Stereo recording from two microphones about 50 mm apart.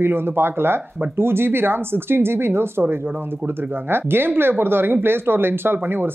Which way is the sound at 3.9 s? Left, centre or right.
Right.